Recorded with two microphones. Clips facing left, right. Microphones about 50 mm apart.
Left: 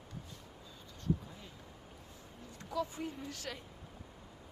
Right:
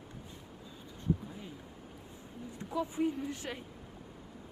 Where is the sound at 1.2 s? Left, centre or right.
Centre.